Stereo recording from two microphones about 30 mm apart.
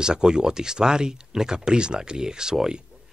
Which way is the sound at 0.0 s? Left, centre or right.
Right.